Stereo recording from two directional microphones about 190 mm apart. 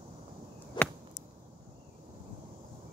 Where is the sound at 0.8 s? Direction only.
20° left (ahead or behind).